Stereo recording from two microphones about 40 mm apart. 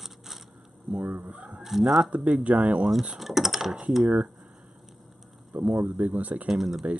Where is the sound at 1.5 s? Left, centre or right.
Centre.